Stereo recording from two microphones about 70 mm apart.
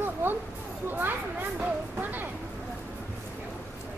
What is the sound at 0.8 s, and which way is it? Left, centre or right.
Speech, right.